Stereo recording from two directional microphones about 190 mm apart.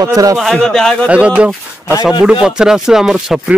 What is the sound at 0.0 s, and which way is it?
Speech, 20° right (ahead or behind).